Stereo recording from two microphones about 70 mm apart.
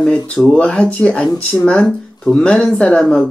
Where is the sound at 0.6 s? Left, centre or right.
Centre.